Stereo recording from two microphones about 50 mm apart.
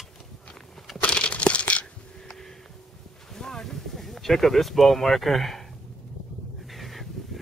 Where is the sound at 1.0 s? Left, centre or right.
Left.